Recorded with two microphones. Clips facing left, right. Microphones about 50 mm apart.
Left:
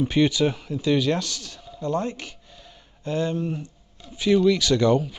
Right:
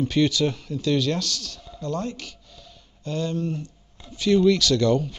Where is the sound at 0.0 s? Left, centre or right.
Centre.